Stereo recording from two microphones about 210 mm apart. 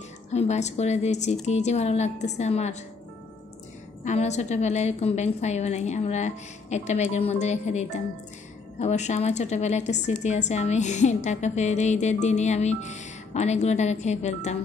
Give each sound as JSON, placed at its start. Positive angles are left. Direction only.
{"t": 0.3, "sound": "a woman's voice", "side_deg": 30}
{"t": 4.0, "sound": "a woman's voice", "side_deg": 35}